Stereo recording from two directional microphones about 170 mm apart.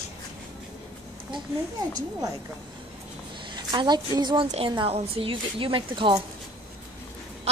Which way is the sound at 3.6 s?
25° right (ahead or behind).